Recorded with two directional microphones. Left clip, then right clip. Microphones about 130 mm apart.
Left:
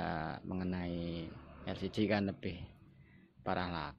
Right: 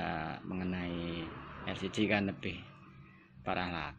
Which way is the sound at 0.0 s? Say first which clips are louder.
Right 2 dB; 40° left (ahead or behind).